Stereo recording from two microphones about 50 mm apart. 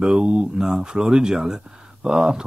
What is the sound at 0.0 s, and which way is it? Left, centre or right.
Speech, centre.